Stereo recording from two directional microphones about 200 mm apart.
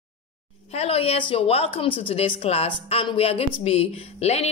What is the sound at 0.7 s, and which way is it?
A woman's voice, 30° left (ahead or behind).